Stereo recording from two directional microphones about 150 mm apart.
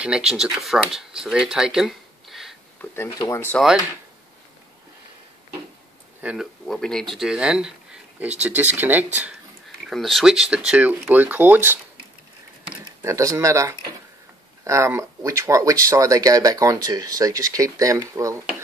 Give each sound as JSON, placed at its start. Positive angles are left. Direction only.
{"t": 0.0, "sound": "speech", "side_deg": -5}
{"t": 2.8, "sound": "speech", "side_deg": 20}
{"t": 3.5, "sound": "speech", "side_deg": -5}
{"t": 6.2, "sound": "speech", "side_deg": 0}
{"t": 9.8, "sound": "speech", "side_deg": 0}
{"t": 13.0, "sound": "speech", "side_deg": -20}